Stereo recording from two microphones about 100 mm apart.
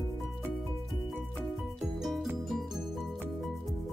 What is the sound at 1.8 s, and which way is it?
Music, centre (ahead or behind).